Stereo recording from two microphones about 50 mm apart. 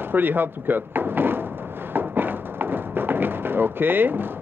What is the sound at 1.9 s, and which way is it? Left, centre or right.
Thump, right.